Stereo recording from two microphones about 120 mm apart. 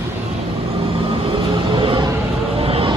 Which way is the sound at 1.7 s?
45° right (ahead or behind).